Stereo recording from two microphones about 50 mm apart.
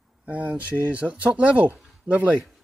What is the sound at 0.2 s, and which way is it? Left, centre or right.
Speech, right.